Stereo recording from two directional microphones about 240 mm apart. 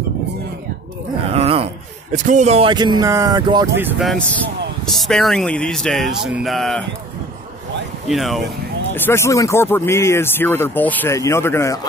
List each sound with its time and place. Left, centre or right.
1.3 s a sound: right
2.1 s speech: right; by 6.8 s centre
8.1 s speech: centre